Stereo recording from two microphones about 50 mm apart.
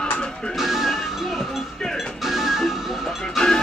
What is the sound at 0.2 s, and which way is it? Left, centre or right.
Music, centre.